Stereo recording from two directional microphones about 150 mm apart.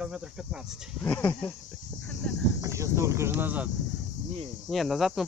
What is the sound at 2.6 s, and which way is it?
Speech, 20° right (ahead or behind).